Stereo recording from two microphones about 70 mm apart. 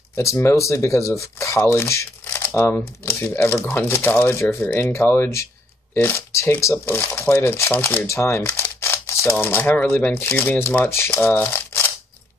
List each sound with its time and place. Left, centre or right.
0.1 s speech: left
2.2 s shuffling cards: left
3.1 s speech: left
6.6 s speech: left
9.4 s speech: left